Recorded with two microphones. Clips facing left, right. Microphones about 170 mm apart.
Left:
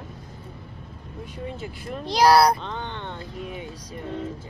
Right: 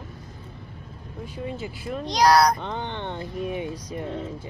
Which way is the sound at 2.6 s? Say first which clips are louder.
Right 2 dB; 15° right (ahead or behind).